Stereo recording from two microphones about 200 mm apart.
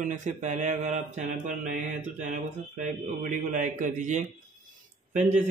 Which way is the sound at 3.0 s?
40° right (ahead or behind).